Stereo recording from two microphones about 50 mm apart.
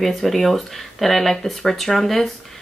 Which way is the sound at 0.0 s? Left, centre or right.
Centre.